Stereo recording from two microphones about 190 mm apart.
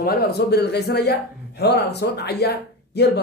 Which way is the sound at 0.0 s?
55° left (ahead or behind).